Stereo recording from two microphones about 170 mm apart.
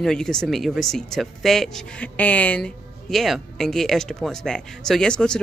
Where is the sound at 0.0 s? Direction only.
5° left (ahead or behind).